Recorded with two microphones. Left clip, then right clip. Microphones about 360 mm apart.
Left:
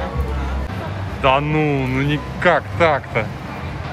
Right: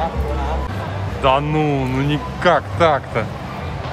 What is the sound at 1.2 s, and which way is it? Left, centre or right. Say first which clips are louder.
Speech: even; centre.